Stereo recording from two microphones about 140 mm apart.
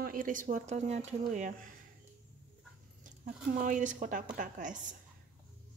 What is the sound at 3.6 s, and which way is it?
A woman's voice, 65° right (ahead or behind).